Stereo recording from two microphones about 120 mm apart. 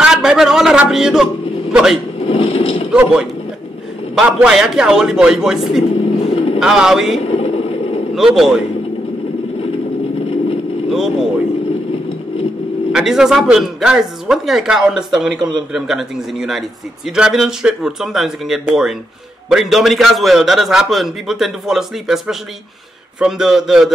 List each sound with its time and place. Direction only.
0.0 s a man's voice: 5° right (ahead or behind)
2.1 s a sound: 55° left (ahead or behind)
2.9 s a man's voice: 5° right (ahead or behind)
6.3 s bird: 55° left (ahead or behind)
6.6 s speech: 5° right (ahead or behind)
7.2 s a sound: 55° left (ahead or behind)
8.1 s speech: 5° right (ahead or behind)
10.9 s speech: 5° right (ahead or behind)
12.9 s speech: 5° right (ahead or behind)